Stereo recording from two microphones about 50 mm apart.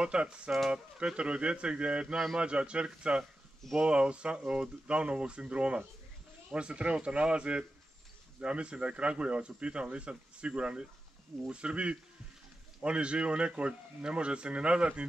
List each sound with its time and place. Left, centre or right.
0.0 s speech: centre